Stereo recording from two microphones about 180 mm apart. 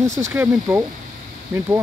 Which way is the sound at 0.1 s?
15° right (ahead or behind).